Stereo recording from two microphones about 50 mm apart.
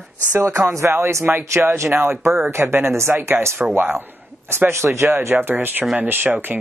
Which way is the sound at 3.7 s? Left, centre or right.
Right.